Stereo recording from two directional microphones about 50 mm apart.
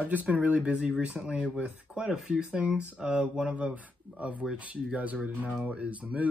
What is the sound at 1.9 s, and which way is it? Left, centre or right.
Speech, centre.